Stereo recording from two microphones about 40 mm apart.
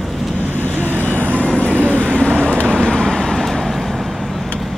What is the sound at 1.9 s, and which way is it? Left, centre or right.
Vehicle, left.